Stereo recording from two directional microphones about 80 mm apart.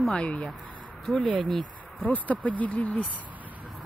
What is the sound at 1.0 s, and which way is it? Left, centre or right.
Speech, centre.